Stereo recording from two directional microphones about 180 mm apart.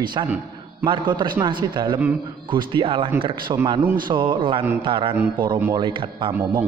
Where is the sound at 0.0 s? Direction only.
25° right (ahead or behind).